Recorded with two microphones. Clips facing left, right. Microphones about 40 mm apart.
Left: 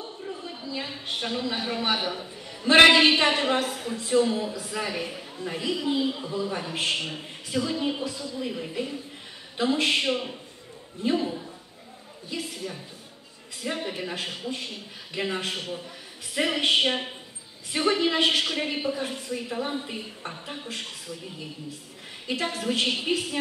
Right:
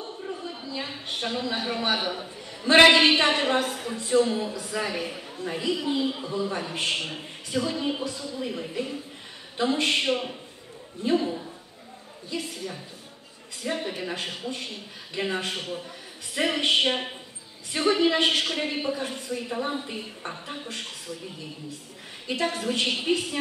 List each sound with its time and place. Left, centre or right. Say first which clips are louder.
0.0 s a sound: right 2 dB; centre
0.7 s a man's voice: left 1 dB; centre
6.0 s a man's voice: even; centre
22.5 s a man's voice: even; centre